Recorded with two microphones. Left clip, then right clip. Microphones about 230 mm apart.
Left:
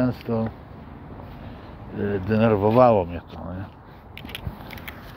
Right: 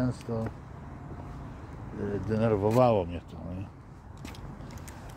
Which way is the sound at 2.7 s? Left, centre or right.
Centre.